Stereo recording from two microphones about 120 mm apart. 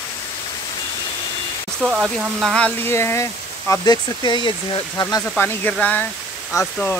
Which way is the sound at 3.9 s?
40° left (ahead or behind).